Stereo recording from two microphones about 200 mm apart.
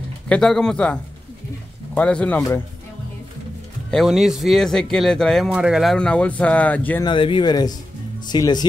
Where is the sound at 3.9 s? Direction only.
Centre (ahead or behind).